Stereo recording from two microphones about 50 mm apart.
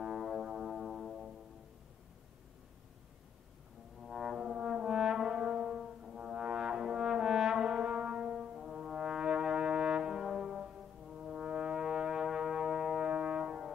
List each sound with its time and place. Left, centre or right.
0.0 s music: centre
4.0 s brass instrument: centre
10.4 s music: centre
11.2 s brass instrument: centre